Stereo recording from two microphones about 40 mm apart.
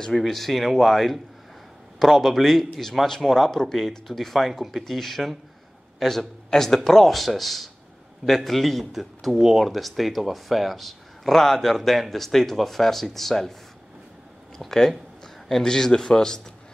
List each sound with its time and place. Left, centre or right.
0.2 s speech: centre
14.6 s a man's voice: centre